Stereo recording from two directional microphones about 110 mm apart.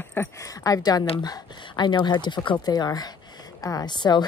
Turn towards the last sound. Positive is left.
turn(degrees=40)  # may be behind; listen again after turning